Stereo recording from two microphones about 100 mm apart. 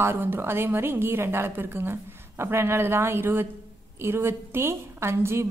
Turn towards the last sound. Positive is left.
turn(degrees=-25)  # may be behind; listen again after turning